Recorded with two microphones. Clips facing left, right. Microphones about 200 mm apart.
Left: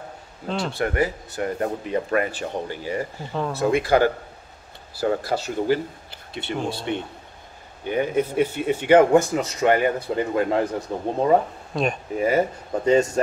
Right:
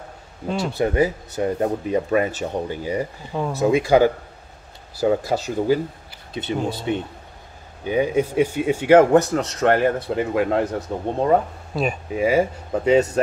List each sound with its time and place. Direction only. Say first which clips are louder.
0.5 s speech: right 2 dB; 5° right (ahead or behind)
0.7 s speech: right 5 dB; 20° right (ahead or behind)